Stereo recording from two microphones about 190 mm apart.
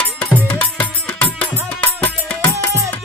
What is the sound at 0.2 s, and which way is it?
Music, 10° left (ahead or behind).